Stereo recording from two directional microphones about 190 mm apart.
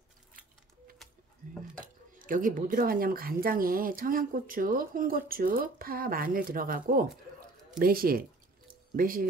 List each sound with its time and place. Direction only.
1.4 s dishes: 40° right (ahead or behind)
2.1 s speech: 45° right (ahead or behind)